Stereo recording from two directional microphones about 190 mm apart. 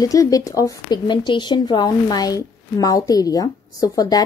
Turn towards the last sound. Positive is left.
turn(degrees=20)  # may be behind; listen again after turning